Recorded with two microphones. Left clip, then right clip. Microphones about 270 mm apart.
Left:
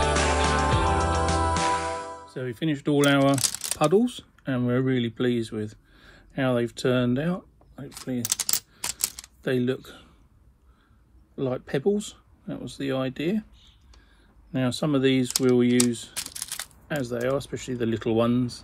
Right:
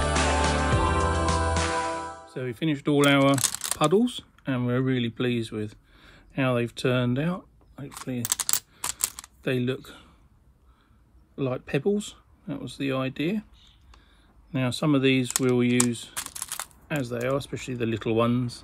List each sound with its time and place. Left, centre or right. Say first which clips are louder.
0.0 s music: left 1 dB; centre
2.3 s speech: even; right
3.3 s crumpling: even; centre
4.1 s speech: even; right
8.2 s typing: even; centre
9.4 s speech: left 2 dB; right
11.3 s speech: left 1 dB; right
14.5 s speech: even; right
16.2 s crushing: left 1 dB; centre
16.8 s speech: left 1 dB; right